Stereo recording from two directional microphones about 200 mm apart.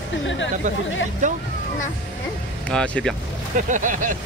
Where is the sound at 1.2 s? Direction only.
35° right (ahead or behind).